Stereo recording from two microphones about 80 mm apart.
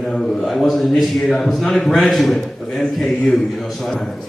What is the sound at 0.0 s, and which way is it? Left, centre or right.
A man's voice, centre.